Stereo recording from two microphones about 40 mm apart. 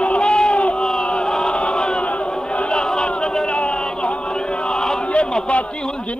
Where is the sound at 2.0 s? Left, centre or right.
Left.